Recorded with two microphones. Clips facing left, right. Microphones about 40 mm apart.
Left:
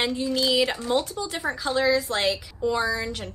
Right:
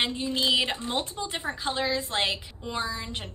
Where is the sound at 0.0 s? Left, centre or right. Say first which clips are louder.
Left 3 dB; right.